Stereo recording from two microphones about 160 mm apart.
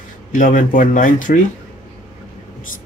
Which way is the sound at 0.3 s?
55° left (ahead or behind).